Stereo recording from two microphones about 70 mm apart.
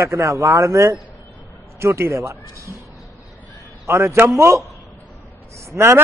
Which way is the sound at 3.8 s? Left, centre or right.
Right.